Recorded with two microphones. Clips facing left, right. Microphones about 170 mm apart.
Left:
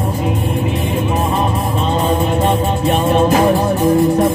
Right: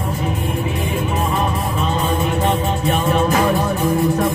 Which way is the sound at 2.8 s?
30° left (ahead or behind).